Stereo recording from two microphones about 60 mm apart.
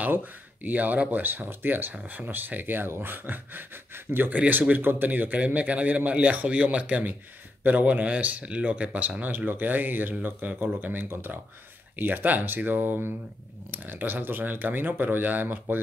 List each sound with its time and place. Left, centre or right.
0.0 s speech: right